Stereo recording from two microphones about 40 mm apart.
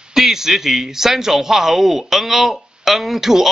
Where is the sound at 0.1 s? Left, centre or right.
Centre.